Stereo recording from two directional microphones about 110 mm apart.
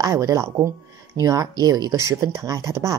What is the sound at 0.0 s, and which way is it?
Speech, 35° right (ahead or behind).